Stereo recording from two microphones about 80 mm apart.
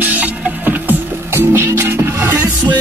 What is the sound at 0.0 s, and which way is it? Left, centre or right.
Music, right.